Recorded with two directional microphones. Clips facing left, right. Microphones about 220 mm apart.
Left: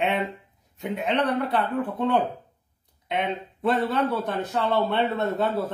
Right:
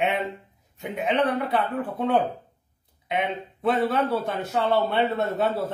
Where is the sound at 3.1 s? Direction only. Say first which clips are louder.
Even; centre (ahead or behind).